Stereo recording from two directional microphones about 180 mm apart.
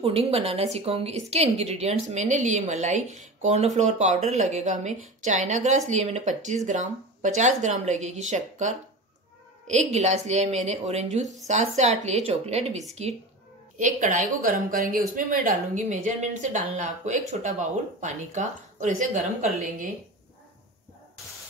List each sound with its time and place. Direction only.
0.0 s speech: 35° right (ahead or behind)